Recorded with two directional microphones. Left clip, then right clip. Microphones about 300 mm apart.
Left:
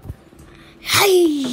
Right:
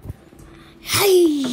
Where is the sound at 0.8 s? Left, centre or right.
Centre.